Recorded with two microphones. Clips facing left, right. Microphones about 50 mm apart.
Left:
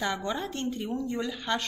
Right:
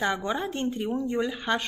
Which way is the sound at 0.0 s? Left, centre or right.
Right.